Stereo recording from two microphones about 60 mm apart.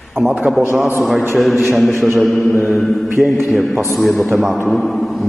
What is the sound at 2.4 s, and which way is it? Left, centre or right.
Mantra, right.